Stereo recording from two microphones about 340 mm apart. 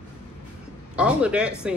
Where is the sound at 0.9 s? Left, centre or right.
Centre.